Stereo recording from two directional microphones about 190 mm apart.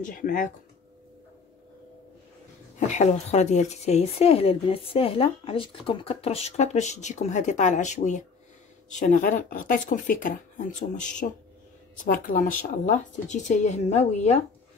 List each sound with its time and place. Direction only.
0.0 s speech: 45° left (ahead or behind)
2.9 s speech: 35° left (ahead or behind)
12.0 s speech: 45° left (ahead or behind)